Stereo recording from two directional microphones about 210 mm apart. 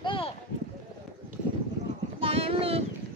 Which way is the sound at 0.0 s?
25° left (ahead or behind).